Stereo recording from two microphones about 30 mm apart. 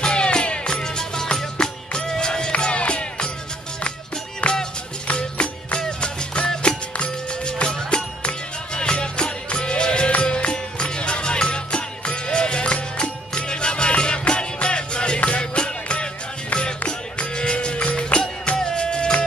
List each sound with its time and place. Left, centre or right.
0.0 s music: left
0.8 s music: left
2.7 s music: left
4.4 s music: left
5.1 s music: left
18.6 s music: left